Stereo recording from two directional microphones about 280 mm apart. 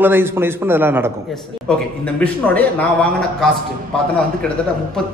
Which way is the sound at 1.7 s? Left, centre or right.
Centre.